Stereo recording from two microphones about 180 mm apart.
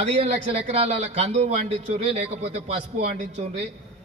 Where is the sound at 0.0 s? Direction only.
35° right (ahead or behind).